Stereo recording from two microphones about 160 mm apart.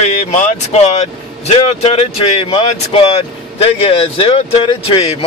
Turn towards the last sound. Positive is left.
turn(degrees=35)  # may be behind; listen again after turning